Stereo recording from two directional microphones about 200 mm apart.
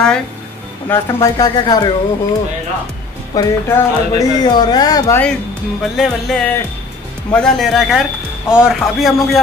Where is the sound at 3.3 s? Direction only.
15° left (ahead or behind).